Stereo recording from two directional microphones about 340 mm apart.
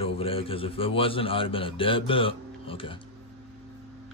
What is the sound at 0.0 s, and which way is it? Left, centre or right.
Speech, centre.